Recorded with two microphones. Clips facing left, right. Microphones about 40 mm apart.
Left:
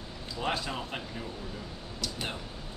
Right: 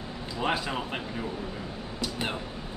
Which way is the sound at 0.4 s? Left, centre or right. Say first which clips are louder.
Right 4 dB; centre.